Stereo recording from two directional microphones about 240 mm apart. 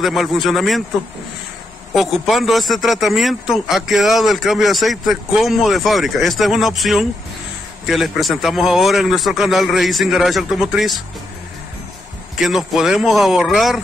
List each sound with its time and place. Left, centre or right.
0.0 s speech: centre
2.0 s speech: centre
12.4 s speech: centre